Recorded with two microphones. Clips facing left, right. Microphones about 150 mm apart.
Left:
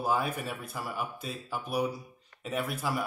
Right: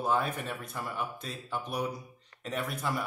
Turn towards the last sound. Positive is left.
turn(degrees=5)  # may be behind; listen again after turning